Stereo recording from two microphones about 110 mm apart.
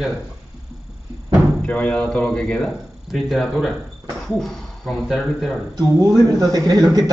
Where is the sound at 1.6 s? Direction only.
10° left (ahead or behind).